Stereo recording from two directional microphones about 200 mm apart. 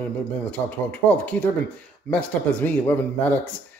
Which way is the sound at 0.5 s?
5° left (ahead or behind).